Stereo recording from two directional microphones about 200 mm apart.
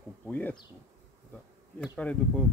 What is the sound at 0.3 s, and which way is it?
Speech, 10° left (ahead or behind).